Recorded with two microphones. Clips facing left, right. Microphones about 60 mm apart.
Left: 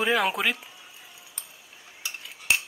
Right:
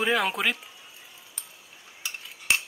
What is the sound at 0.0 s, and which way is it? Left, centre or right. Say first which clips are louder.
Speech: left 1 dB; centre.